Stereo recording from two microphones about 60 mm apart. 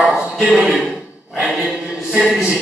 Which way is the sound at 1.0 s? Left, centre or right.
Centre.